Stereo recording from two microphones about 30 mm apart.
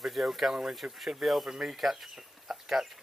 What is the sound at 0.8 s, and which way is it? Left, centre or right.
Speech, right.